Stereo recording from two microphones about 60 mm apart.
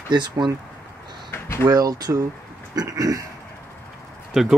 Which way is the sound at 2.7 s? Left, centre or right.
Right.